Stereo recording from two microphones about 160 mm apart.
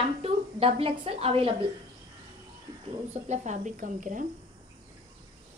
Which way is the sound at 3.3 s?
50° right (ahead or behind).